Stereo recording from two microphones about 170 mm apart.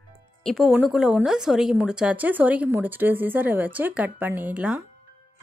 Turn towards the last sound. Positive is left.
turn(degrees=-10)  # may be behind; listen again after turning